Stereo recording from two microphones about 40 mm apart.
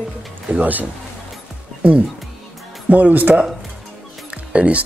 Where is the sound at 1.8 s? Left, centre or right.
Right.